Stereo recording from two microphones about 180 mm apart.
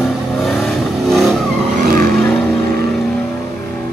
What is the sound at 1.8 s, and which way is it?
Vehicle, 55° right (ahead or behind).